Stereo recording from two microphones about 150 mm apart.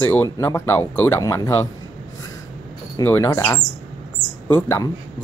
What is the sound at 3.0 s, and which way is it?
Speech, 20° left (ahead or behind).